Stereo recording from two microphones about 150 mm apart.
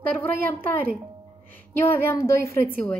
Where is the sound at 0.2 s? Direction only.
10° left (ahead or behind).